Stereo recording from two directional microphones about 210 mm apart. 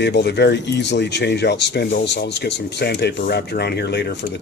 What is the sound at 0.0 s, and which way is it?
Speech, 55° left (ahead or behind).